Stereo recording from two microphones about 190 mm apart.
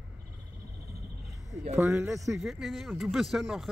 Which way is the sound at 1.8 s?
15° right (ahead or behind).